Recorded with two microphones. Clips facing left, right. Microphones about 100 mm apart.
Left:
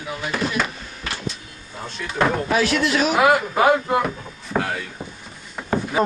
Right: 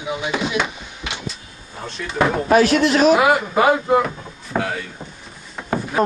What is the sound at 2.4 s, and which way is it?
Speech, 45° right (ahead or behind).